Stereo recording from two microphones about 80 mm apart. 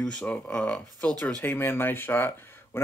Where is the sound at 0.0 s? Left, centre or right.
Centre.